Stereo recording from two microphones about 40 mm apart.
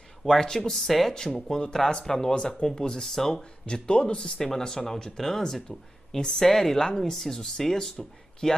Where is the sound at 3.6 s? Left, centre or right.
Left.